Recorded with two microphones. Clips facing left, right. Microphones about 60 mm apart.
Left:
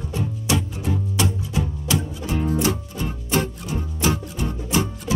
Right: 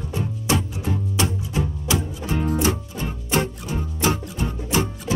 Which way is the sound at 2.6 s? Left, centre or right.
Right.